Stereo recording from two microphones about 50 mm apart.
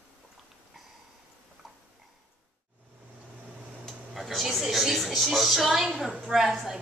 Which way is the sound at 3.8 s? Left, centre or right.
Centre.